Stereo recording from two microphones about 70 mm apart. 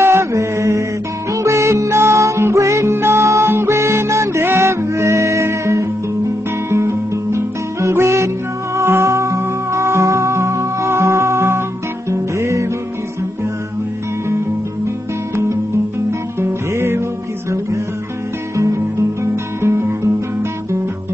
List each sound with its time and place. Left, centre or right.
0.0 s mantra: right
1.3 s music: right
2.9 s music: right
16.1 s music: right